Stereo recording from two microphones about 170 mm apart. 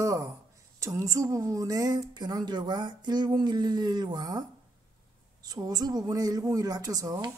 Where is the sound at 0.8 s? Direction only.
20° right (ahead or behind).